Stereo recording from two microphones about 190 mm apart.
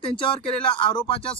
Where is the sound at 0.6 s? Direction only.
25° left (ahead or behind).